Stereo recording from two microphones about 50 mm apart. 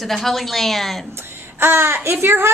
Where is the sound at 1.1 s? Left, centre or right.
Right.